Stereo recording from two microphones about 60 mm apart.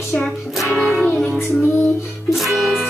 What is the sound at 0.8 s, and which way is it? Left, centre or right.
Music, centre.